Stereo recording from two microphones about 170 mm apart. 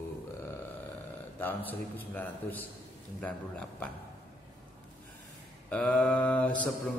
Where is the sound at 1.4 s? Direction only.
10° left (ahead or behind).